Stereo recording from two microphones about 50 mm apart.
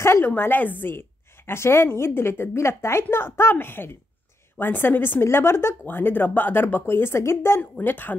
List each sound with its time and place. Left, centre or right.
0.2 s a woman's voice: left
5.2 s a woman's voice: left
5.9 s a woman's voice: left
7.8 s speech: left